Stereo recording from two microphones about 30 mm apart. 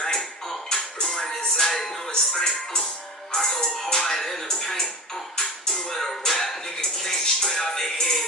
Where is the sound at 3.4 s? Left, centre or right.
Centre.